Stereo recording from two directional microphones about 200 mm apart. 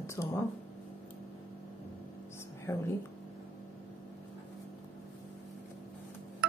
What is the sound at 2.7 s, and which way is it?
Speech, 15° left (ahead or behind).